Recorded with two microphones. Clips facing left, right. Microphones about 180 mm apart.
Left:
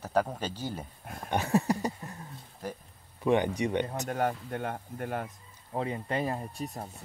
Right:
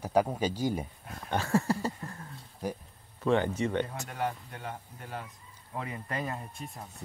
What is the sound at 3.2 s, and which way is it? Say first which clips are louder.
Speech: left 1 dB; 15° left (ahead or behind).